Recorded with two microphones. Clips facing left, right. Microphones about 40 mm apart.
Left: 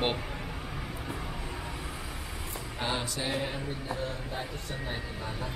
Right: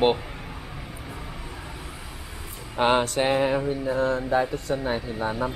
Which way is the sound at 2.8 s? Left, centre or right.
Right.